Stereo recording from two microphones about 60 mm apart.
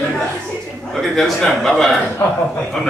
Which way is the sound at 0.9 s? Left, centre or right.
Centre.